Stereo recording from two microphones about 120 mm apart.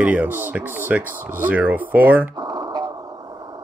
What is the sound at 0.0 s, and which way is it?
Speech, 10° right (ahead or behind).